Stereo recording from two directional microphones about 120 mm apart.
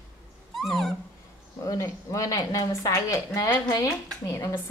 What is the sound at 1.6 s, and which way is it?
A woman's voice, 30° left (ahead or behind).